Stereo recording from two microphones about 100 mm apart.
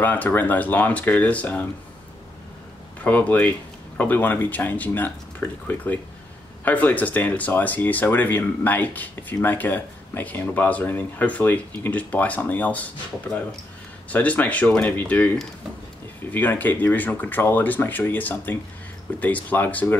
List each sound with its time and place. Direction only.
0.0 s speech: 20° left (ahead or behind)
3.0 s speech: 15° left (ahead or behind)
6.6 s speech: 15° left (ahead or behind)
14.1 s speech: 15° left (ahead or behind)